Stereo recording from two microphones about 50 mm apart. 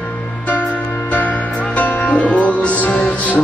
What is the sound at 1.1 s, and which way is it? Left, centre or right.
Music, left.